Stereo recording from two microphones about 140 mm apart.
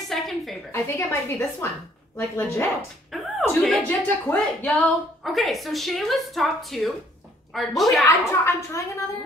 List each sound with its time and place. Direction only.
0.1 s a sound: centre (ahead or behind)
0.7 s a woman's voice: 20° left (ahead or behind)
3.1 s a sound: centre (ahead or behind)
3.8 s speech: 15° left (ahead or behind)
5.2 s speech: centre (ahead or behind)
8.0 s a woman's voice: 20° left (ahead or behind)